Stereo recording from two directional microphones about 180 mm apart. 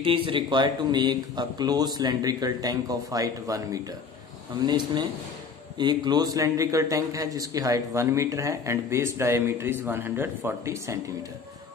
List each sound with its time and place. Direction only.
0.0 s a man's voice: 30° right (ahead or behind)